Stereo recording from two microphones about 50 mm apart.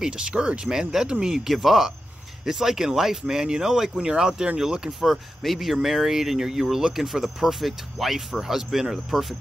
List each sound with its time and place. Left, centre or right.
0.0 s speech: centre
1.5 s speech: centre
5.0 s speech: centre